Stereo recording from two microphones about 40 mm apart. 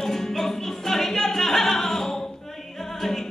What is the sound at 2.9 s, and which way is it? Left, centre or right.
Music, centre.